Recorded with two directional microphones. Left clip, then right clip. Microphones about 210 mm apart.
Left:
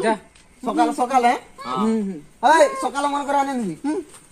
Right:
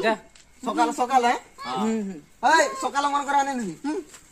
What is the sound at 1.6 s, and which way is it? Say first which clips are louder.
Speech: left 4 dB; 10° right (ahead or behind).